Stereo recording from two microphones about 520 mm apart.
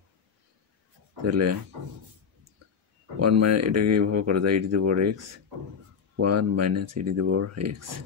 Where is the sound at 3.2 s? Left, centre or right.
Right.